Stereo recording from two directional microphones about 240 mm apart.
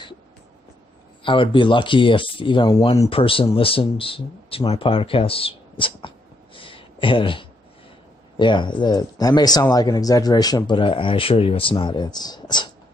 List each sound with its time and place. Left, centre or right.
1.2 s speech: left